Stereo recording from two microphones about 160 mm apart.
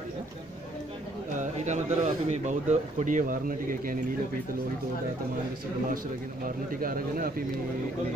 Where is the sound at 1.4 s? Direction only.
50° right (ahead or behind).